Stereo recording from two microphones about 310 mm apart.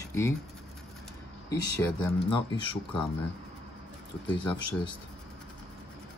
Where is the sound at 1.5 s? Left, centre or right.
Centre.